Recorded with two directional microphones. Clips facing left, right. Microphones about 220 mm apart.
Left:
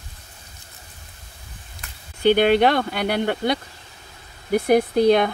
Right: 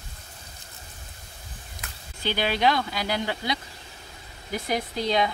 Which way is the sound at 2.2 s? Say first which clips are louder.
Left 9 dB; 55° left (ahead or behind).